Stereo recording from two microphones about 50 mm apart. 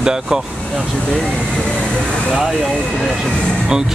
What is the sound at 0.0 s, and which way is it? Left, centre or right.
Speech, centre.